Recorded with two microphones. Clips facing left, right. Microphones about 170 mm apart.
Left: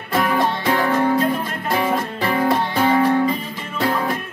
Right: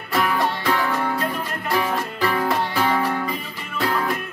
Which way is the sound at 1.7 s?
25° left (ahead or behind).